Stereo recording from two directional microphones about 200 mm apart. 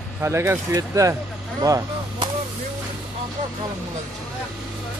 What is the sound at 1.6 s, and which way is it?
Vehicle, 20° right (ahead or behind).